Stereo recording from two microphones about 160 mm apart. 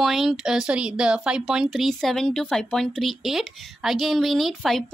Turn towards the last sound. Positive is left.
turn(degrees=0)  # may be behind; listen again after turning